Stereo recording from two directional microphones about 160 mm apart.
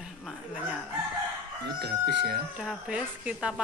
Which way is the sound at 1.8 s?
90° right.